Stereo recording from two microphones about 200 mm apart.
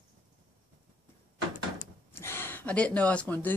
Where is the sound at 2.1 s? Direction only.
10° left (ahead or behind).